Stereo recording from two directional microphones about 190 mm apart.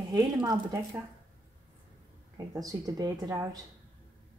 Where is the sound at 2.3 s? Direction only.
20° right (ahead or behind).